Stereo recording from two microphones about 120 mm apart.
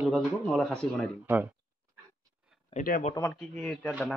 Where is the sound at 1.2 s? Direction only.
15° right (ahead or behind).